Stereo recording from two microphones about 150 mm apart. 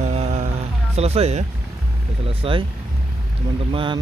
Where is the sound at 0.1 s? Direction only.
45° right (ahead or behind).